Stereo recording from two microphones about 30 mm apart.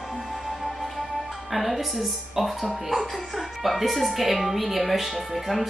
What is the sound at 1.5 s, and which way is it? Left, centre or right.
Speech, centre.